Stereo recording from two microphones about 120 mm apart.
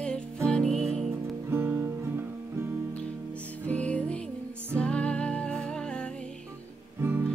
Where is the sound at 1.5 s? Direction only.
20° right (ahead or behind).